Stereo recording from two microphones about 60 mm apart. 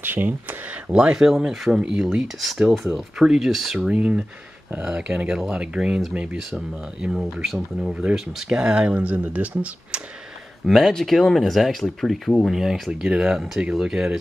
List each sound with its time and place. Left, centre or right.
0.0 s a sound: right
0.9 s speech: centre
3.8 s speech: right
10.7 s speech: centre
12.4 s speech: centre